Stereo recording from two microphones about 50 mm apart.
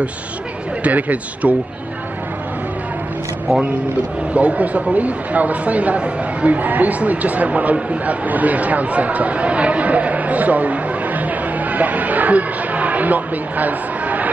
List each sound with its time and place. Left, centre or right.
0.8 s speech: right
4.3 s speech: right